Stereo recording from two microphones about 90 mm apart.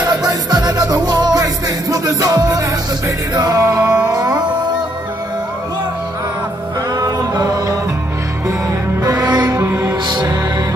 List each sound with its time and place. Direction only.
0.0 s music: 45° right (ahead or behind)
7.0 s music: 45° right (ahead or behind)
9.0 s music: 50° right (ahead or behind)
9.6 s music: 35° right (ahead or behind)
10.0 s music: 50° right (ahead or behind)